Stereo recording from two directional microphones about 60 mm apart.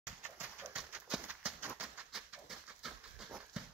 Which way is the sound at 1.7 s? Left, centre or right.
Centre.